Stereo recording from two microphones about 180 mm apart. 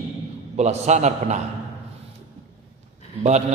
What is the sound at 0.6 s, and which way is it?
Speech, 40° right (ahead or behind).